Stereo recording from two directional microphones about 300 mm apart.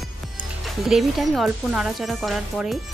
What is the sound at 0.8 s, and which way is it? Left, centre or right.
A woman's voice, centre.